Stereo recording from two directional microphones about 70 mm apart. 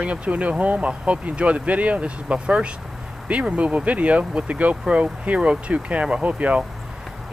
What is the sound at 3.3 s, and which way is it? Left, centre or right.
Speech, centre.